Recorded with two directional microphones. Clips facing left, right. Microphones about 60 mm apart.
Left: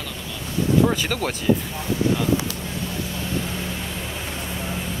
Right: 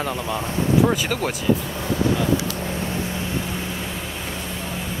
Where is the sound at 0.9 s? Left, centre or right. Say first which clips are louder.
Right 1 dB; centre.